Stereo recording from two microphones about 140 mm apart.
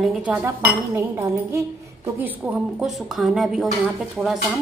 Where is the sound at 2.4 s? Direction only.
Centre (ahead or behind).